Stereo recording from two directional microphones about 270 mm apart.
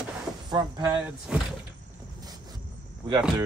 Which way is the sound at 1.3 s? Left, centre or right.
Centre.